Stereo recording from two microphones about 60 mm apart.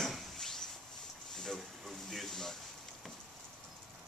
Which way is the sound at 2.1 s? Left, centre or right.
Centre.